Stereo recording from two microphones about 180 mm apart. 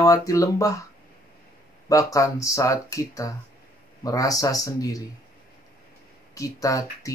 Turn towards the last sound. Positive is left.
turn(degrees=20)  # may be behind; listen again after turning